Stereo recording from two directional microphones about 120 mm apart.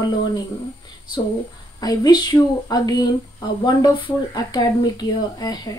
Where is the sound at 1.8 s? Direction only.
35° left (ahead or behind).